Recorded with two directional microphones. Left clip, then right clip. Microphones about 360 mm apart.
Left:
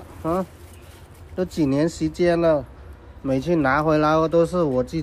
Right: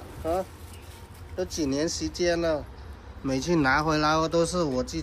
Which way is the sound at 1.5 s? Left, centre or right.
Centre.